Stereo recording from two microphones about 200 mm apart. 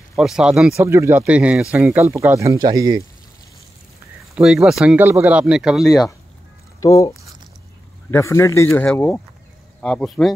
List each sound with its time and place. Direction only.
0.1 s speech: centre (ahead or behind)
0.8 s speech: 15° right (ahead or behind)
4.4 s speech: centre (ahead or behind)
6.8 s speech: 15° left (ahead or behind)